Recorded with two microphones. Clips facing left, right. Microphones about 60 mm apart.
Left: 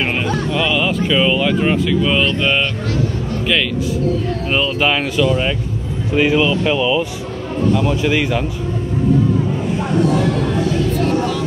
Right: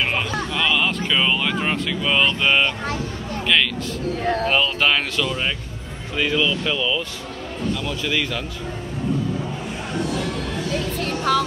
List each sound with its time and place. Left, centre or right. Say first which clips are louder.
0.0 s a sound: left 4 dB; centre
4.5 s speech: left 5 dB; centre
6.1 s speech: left 7 dB; left